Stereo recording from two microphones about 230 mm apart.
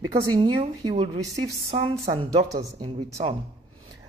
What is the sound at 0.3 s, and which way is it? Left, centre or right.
Speech, centre.